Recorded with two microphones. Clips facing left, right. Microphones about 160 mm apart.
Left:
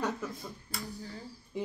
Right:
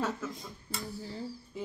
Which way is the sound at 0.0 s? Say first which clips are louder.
Even; 15° left (ahead or behind).